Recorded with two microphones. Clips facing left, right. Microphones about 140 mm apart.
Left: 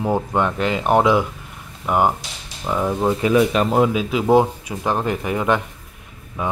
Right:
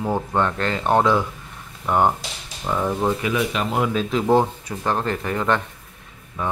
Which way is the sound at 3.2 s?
45° left (ahead or behind).